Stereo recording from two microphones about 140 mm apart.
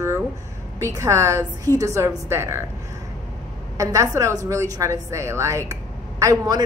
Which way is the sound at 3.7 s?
25° right (ahead or behind).